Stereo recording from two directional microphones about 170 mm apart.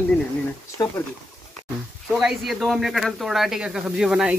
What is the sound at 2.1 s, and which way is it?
Speech, centre (ahead or behind).